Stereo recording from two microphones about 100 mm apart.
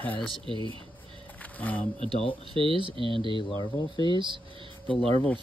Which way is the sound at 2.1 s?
70° left (ahead or behind).